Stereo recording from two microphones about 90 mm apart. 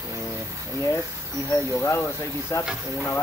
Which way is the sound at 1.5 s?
30° left (ahead or behind).